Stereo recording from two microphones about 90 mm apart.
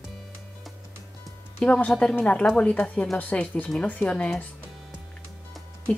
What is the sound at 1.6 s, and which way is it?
A woman's voice, 15° left (ahead or behind).